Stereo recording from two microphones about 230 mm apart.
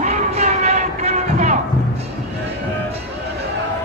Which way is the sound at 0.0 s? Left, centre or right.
Right.